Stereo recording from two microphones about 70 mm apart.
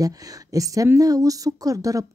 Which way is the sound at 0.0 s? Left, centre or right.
Right.